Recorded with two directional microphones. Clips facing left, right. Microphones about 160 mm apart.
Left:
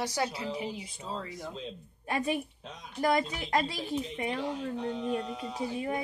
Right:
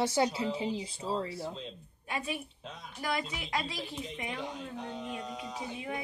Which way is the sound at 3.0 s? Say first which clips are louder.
Left 7 dB; 40° left (ahead or behind).